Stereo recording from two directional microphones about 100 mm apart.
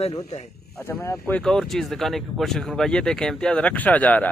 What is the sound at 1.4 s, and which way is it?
Speech, 5° left (ahead or behind).